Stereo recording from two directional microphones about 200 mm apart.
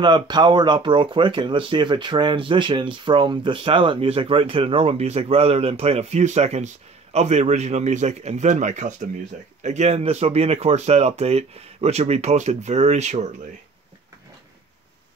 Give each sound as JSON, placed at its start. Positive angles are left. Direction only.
{"t": 0.0, "sound": "speech", "side_deg": -20}